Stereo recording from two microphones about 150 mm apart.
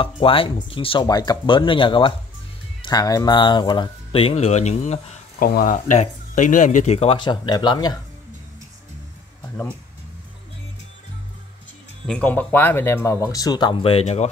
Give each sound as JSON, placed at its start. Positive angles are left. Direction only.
{"t": 0.0, "sound": "speech", "side_deg": 35}
{"t": 5.4, "sound": "speech", "side_deg": 75}
{"t": 7.2, "sound": "speech", "side_deg": 30}
{"t": 12.1, "sound": "speech", "side_deg": 10}